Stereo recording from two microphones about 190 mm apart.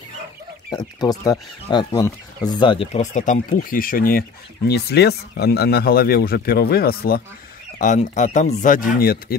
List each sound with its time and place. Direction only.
0.7 s speech: 20° left (ahead or behind); by 7.2 s 55° left (ahead or behind)
7.8 s speech: 40° left (ahead or behind)